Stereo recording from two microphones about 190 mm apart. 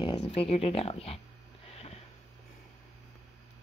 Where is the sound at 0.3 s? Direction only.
30° left (ahead or behind).